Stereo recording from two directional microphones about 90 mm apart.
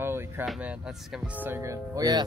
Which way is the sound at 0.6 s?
10° right (ahead or behind).